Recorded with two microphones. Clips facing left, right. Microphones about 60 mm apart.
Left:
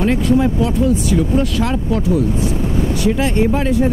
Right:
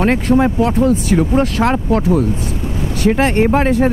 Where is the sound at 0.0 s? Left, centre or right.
Right.